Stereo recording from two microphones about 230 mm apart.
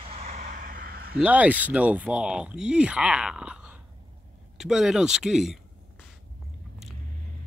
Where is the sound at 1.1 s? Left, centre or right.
Centre.